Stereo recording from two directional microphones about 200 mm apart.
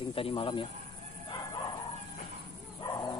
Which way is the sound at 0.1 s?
30° left (ahead or behind).